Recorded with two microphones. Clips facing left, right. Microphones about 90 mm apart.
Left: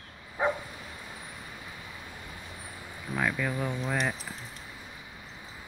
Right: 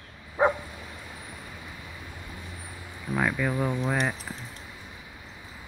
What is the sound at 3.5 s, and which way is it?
Speech, 20° right (ahead or behind).